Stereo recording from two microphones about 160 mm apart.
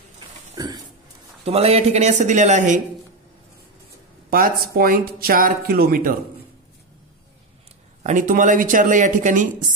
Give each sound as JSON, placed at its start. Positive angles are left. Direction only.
{"t": 0.6, "sound": "a sound", "side_deg": -25}
{"t": 1.4, "sound": "speech", "side_deg": -40}
{"t": 4.3, "sound": "speech", "side_deg": -65}
{"t": 8.0, "sound": "speech", "side_deg": -55}